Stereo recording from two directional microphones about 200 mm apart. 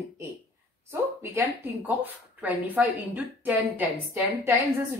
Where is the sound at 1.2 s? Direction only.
15° right (ahead or behind).